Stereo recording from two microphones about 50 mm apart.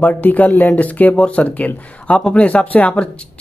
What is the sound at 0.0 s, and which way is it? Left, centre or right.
Speech, left.